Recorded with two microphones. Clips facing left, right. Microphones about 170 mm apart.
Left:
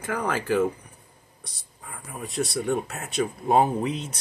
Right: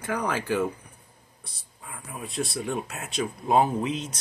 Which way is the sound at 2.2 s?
80° left.